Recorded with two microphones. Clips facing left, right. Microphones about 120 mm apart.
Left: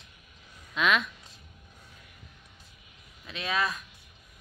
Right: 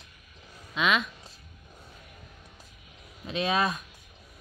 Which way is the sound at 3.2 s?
25° right (ahead or behind).